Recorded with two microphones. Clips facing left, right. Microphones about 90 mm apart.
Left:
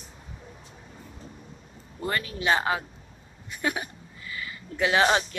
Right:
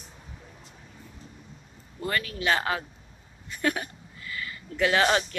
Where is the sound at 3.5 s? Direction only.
15° left (ahead or behind).